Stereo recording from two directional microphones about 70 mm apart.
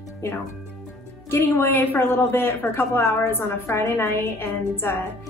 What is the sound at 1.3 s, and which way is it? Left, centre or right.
Speech, left.